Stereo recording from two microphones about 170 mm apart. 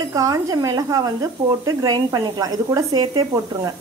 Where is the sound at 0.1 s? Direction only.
20° right (ahead or behind).